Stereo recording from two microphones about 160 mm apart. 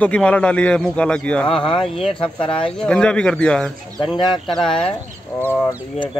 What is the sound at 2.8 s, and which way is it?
Speech, 5° left (ahead or behind).